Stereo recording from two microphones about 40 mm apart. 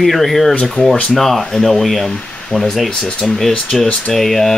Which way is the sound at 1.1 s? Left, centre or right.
Centre.